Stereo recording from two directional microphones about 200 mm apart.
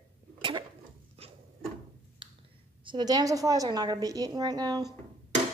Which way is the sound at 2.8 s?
20° right (ahead or behind).